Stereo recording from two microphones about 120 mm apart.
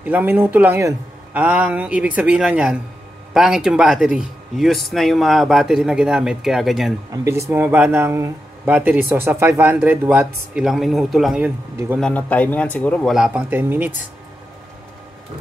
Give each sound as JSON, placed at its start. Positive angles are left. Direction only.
{"t": 0.0, "sound": "speech", "side_deg": -15}
{"t": 7.1, "sound": "speech", "side_deg": -25}
{"t": 12.0, "sound": "a man's voice", "side_deg": 10}
{"t": 13.1, "sound": "speech", "side_deg": -5}
{"t": 13.4, "sound": "speech", "side_deg": -20}